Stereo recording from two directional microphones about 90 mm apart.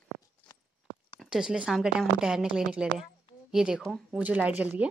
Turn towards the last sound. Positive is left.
turn(degrees=-15)  # may be behind; listen again after turning